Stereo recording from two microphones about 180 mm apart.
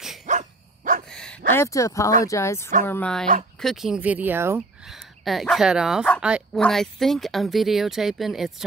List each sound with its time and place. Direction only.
0.3 s dog: 45° right (ahead or behind)
1.1 s bow-wow: 5° left (ahead or behind)
1.5 s speech: 15° left (ahead or behind); by 4.6 s 10° right (ahead or behind)
4.8 s a woman's voice: centre (ahead or behind)